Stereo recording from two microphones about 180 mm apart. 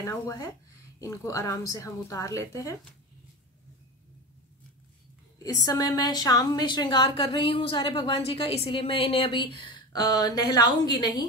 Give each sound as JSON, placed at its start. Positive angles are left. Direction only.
{"t": 0.0, "sound": "speech", "side_deg": 15}
{"t": 5.7, "sound": "a woman's voice", "side_deg": 20}